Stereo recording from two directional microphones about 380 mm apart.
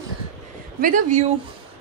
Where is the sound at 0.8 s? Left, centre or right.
Centre.